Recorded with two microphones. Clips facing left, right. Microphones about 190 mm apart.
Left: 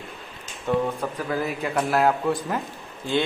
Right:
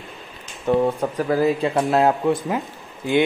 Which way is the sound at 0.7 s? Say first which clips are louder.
Right 5 dB; 15° right (ahead or behind).